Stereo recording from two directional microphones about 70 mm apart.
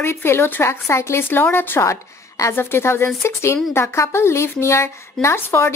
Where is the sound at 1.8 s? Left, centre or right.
Left.